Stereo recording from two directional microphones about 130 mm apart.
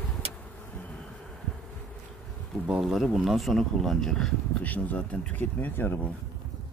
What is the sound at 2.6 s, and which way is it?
Speech, 5° right (ahead or behind).